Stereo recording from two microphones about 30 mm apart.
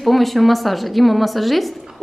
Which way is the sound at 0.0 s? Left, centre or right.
Centre.